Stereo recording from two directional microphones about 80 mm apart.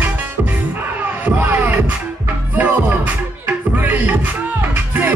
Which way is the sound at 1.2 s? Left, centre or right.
Right.